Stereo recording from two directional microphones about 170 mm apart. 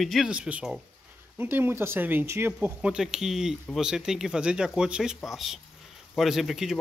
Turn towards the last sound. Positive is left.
turn(degrees=0)  # may be behind; listen again after turning